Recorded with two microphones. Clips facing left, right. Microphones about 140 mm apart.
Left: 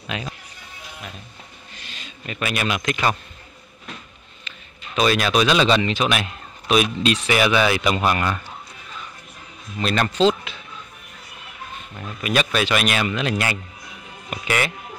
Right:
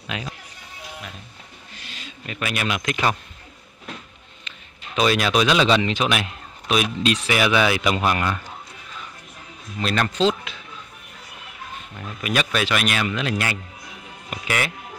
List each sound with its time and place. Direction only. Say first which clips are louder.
0.0 s speech: left 1 dB; 10° right (ahead or behind)
1.8 s speech: right 1 dB; 5° right (ahead or behind)
4.5 s a sound: left 2 dB; 20° right (ahead or behind)
4.9 s a man's voice: left 1 dB; 15° right (ahead or behind)
6.7 s speech: left 2 dB; centre (ahead or behind)
9.8 s speech: left 2 dB; centre (ahead or behind)
12.0 s speech: left 2 dB; 5° right (ahead or behind)